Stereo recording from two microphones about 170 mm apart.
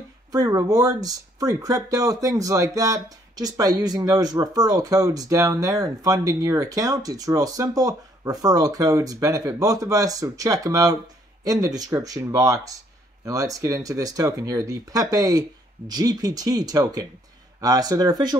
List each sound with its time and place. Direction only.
0.3 s speech: 20° right (ahead or behind)